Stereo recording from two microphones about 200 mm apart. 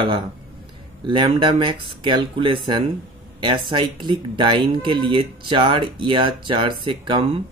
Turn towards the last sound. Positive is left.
turn(degrees=-25)  # may be behind; listen again after turning